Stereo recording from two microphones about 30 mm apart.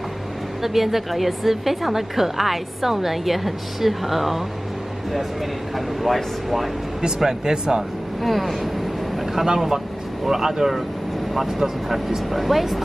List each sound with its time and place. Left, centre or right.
0.6 s a woman's voice: centre
5.8 s a woman's voice: centre
7.2 s speech: right
8.2 s vehicle: centre
10.2 s speech: centre
12.3 s a woman's voice: centre